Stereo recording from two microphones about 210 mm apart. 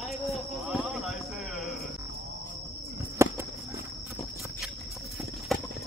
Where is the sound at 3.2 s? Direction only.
10° right (ahead or behind).